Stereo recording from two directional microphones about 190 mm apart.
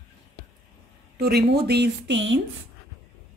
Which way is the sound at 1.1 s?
55° right (ahead or behind).